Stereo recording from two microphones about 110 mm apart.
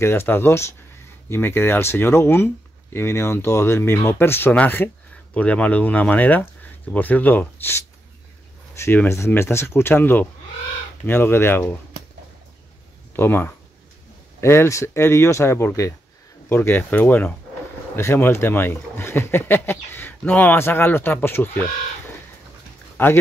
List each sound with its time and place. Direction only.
0.0 s speech: 20° left (ahead or behind)
13.1 s speech: 20° left (ahead or behind)
23.0 s speech: 20° left (ahead or behind)